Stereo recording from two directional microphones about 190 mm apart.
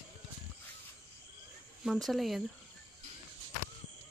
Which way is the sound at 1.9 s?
Centre (ahead or behind).